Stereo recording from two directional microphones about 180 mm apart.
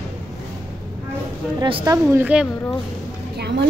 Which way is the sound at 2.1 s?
5° right (ahead or behind).